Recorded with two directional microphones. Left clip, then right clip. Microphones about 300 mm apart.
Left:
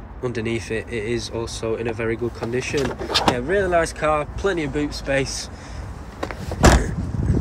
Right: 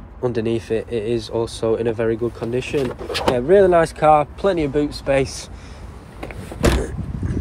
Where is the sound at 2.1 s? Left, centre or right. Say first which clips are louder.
Right 2 dB; right.